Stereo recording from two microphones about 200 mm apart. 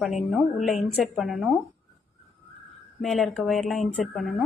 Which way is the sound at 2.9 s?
Centre (ahead or behind).